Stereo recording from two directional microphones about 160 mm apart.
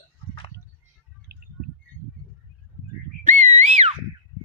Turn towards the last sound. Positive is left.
turn(degrees=-45)  # may be behind; listen again after turning